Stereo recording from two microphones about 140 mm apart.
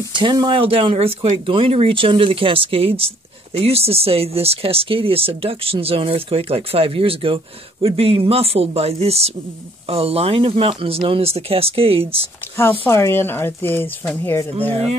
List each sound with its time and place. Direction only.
0.2 s speech: 35° right (ahead or behind)
12.8 s speech: 20° left (ahead or behind)